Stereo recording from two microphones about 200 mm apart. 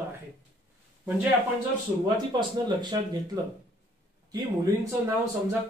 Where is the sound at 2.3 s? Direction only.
20° right (ahead or behind).